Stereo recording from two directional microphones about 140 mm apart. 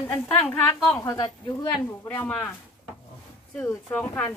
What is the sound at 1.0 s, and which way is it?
Speech, 25° left (ahead or behind).